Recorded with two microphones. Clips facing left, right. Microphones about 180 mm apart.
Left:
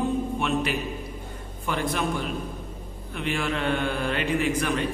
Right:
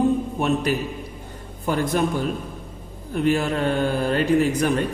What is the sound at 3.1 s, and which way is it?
Speech, 40° right (ahead or behind).